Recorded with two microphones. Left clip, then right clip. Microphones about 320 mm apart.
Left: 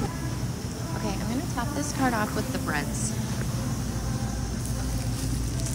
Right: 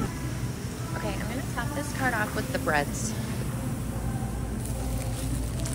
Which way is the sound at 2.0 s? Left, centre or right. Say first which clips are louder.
Even; centre.